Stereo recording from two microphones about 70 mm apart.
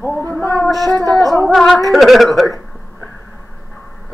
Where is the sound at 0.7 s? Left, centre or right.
Centre.